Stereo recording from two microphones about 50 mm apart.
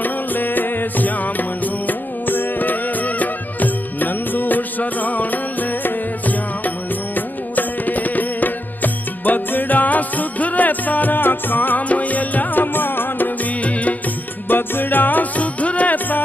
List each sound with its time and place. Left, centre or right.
0.0 s music: left
14.5 s music: left